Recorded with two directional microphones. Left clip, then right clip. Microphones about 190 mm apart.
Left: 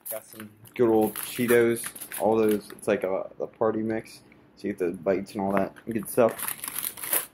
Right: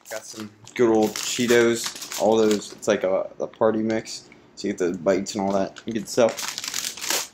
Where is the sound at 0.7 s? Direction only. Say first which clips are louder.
Right 3 dB; 10° right (ahead or behind).